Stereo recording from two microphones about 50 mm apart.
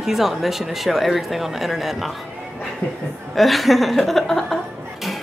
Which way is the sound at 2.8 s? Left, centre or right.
Left.